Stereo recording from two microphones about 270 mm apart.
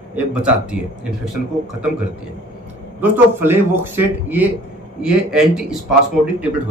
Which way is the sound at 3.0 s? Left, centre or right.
Centre.